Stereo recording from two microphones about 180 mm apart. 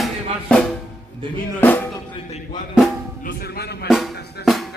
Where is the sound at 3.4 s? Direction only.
60° left (ahead or behind).